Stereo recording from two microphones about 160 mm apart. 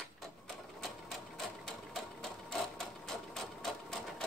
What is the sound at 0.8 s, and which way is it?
Sewing machine, centre (ahead or behind).